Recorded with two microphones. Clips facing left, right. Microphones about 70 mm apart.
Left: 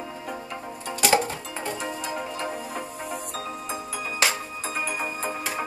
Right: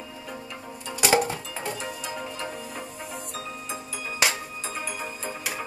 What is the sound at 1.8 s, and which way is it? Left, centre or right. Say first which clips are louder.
Music: left 3 dB; left.